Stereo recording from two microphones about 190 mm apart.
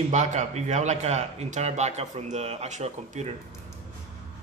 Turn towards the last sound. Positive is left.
turn(degrees=-35)  # may be behind; listen again after turning